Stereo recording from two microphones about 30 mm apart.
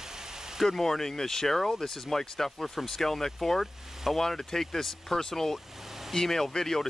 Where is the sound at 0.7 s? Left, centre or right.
Centre.